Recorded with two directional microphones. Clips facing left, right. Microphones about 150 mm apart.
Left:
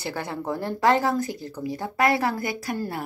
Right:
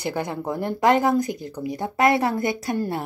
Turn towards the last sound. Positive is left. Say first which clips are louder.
# right 4 dB
turn(degrees=-25)  # may be behind; listen again after turning